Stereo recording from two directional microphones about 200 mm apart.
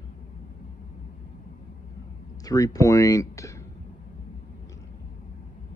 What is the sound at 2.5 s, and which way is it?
Speech, 15° left (ahead or behind).